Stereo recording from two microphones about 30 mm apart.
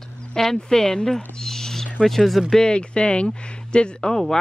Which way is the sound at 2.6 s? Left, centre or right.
Left.